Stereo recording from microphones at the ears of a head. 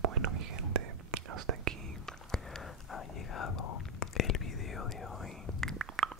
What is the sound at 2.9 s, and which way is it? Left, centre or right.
Whispering, left.